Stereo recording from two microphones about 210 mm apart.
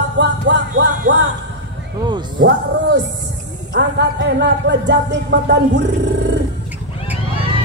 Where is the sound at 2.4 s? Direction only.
55° right (ahead or behind).